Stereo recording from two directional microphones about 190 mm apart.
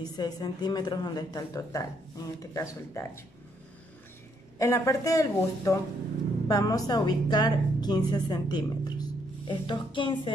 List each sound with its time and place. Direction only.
0.0 s a woman's voice: 20° left (ahead or behind)
4.6 s a woman's voice: 15° left (ahead or behind)